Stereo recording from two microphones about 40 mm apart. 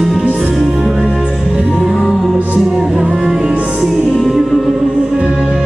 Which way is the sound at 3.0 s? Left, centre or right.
Right.